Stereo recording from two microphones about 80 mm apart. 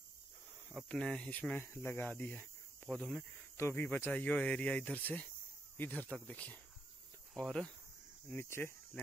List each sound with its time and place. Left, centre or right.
0.7 s speech: centre
1.7 s speech: left
2.0 s speech: centre
3.5 s speech: left
3.9 s speech: centre
8.4 s speech: left